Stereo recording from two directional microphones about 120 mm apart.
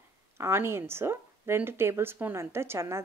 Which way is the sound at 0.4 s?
20° right (ahead or behind).